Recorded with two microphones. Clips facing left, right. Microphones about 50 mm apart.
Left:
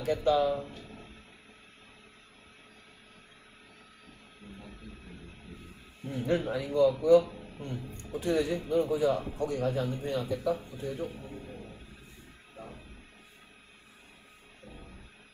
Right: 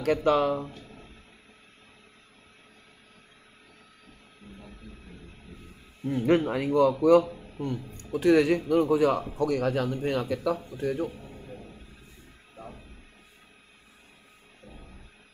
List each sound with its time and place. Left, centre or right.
0.0 s speech: right
6.2 s a man's voice: right